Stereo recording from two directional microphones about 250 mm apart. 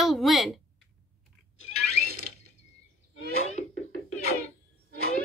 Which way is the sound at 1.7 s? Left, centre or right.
Left.